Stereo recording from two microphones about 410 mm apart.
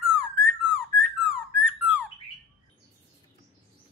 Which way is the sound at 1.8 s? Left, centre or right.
Centre.